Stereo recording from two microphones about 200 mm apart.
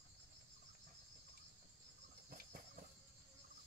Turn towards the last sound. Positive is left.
turn(degrees=-40)  # may be behind; listen again after turning